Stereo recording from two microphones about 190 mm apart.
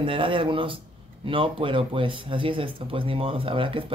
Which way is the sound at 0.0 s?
25° right (ahead or behind).